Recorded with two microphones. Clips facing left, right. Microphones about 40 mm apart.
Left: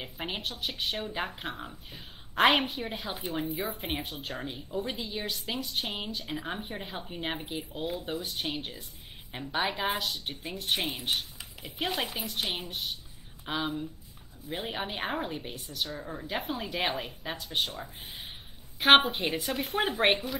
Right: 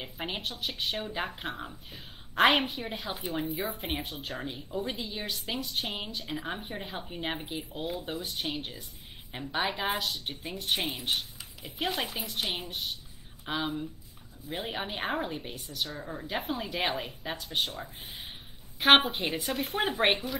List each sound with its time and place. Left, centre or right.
0.0 s speech: centre
8.5 s a woman's voice: left
9.3 s speech: centre
11.8 s speech: centre
18.0 s a sound: centre
18.8 s speech: centre